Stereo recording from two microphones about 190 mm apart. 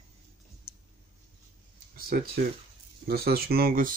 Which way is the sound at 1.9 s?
55° right (ahead or behind).